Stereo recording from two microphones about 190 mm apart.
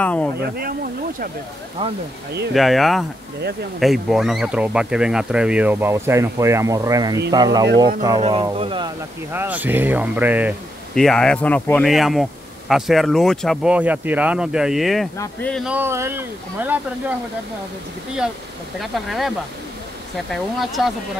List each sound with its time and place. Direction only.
0.0 s speech: 5° left (ahead or behind)
0.4 s speech: 55° right (ahead or behind)
2.5 s speech: centre (ahead or behind); by 8.9 s 25° right (ahead or behind)
9.3 s speech: 10° right (ahead or behind)
11.0 s speech: 5° left (ahead or behind)
15.6 s speech: 10° right (ahead or behind)
18.8 s speech: centre (ahead or behind)